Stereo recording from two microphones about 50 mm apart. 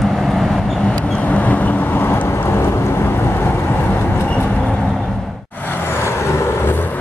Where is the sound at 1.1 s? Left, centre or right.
Left.